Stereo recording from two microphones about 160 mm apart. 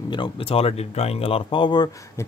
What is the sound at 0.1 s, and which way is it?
Speech, 35° left (ahead or behind).